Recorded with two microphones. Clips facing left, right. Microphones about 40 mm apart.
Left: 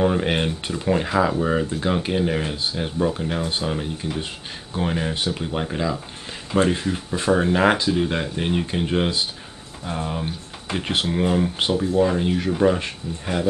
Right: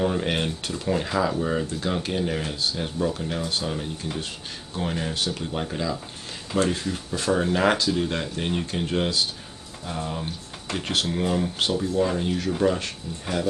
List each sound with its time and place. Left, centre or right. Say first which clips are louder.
0.0 s speech: left 4 dB; centre